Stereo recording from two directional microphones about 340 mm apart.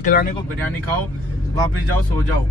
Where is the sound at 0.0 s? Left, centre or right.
Left.